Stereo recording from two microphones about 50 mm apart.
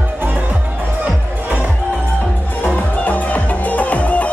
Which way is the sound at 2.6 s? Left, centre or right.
Left.